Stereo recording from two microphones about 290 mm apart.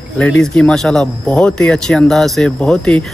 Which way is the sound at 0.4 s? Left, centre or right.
Centre.